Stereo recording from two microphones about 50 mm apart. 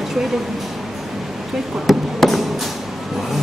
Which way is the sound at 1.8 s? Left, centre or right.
Centre.